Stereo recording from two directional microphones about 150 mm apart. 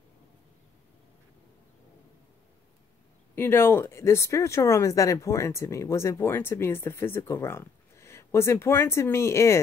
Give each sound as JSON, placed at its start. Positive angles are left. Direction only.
{"t": 3.3, "sound": "speech", "side_deg": 15}